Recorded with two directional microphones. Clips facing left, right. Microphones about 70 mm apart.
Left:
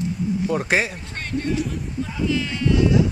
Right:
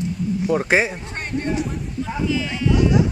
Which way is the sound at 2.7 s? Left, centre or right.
Right.